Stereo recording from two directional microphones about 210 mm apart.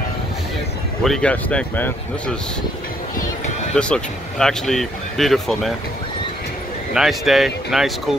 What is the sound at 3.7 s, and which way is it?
Speech, 5° left (ahead or behind).